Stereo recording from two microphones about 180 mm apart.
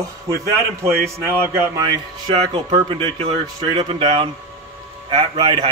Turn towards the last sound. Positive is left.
turn(degrees=-25)  # may be behind; listen again after turning